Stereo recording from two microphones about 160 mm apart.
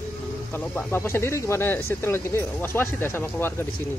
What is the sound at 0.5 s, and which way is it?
Speech, 15° left (ahead or behind).